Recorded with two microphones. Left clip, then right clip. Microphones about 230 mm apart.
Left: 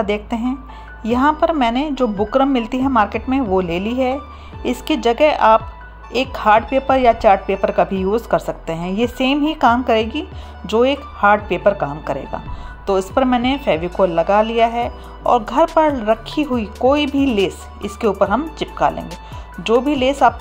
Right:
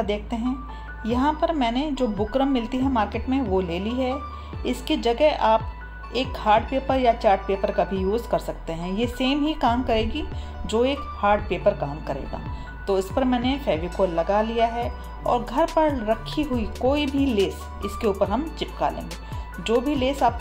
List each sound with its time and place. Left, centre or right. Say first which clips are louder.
0.0 s speech: left 6 dB; left